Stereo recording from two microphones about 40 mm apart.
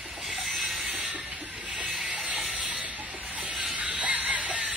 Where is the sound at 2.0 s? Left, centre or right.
Right.